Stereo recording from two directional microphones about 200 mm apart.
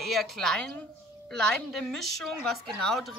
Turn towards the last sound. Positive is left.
turn(degrees=0)  # may be behind; listen again after turning